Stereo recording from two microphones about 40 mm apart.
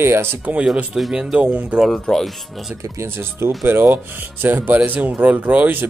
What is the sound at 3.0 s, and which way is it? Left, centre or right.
Speech, right.